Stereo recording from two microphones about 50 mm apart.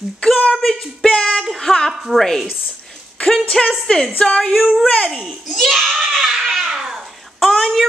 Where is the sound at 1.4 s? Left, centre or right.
Centre.